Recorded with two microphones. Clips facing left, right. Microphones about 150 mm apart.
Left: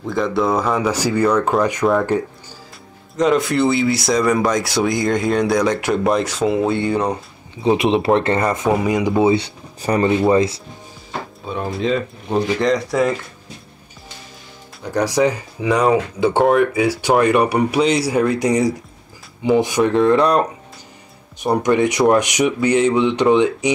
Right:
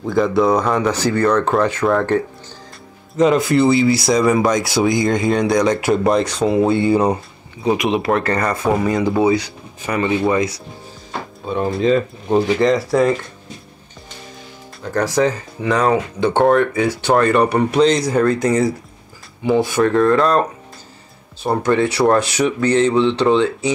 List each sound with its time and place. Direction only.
0.0 s speech: centre (ahead or behind)
3.2 s speech: centre (ahead or behind)
7.6 s speech: 30° left (ahead or behind)
8.6 s speech: 10° left (ahead or behind)
9.2 s speech: 30° left (ahead or behind)
11.4 s speech: centre (ahead or behind)
14.8 s speech: 15° left (ahead or behind)
21.6 s speech: 15° left (ahead or behind)